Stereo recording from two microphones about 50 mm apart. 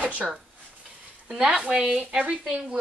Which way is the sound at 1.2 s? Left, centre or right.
Right.